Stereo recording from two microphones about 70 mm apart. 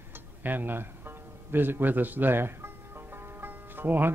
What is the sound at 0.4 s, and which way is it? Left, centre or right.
Speech, right.